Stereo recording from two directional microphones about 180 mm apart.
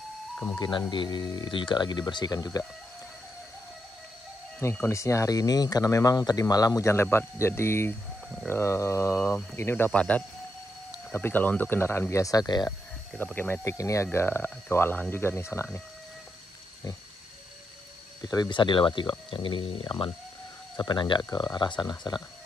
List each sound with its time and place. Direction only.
0.6 s speech: 25° left (ahead or behind)
4.6 s speech: 15° left (ahead or behind)
8.5 s mantra: 15° left (ahead or behind)
9.6 s speech: 10° left (ahead or behind)
13.2 s speech: 10° left (ahead or behind)
18.2 s speech: 25° left (ahead or behind)